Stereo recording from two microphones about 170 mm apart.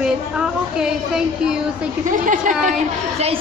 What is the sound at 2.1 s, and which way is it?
Speech, 50° right (ahead or behind).